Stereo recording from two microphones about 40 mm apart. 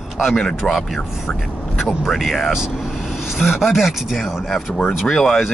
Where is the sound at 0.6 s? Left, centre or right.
Centre.